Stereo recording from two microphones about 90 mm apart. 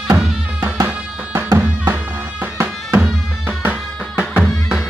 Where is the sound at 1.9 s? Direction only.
25° right (ahead or behind).